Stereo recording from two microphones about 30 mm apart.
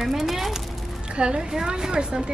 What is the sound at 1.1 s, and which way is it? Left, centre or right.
A woman's voice, right.